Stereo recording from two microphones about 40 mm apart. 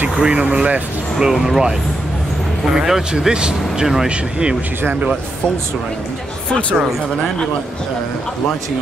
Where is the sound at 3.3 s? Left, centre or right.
Right.